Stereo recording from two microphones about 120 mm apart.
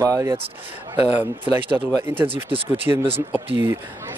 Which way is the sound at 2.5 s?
50° right (ahead or behind).